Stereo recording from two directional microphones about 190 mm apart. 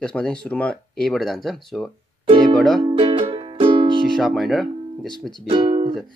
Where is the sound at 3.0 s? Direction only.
25° right (ahead or behind).